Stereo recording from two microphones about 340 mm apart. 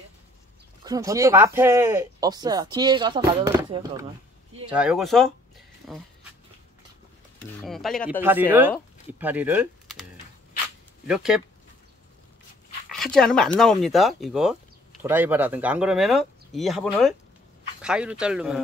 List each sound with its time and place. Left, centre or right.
0.8 s speech: centre
7.6 s speech: centre
11.1 s speech: centre
12.9 s speech: centre